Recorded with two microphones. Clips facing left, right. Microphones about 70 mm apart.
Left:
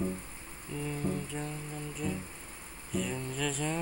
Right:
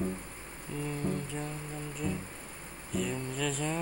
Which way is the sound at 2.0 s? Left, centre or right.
Centre.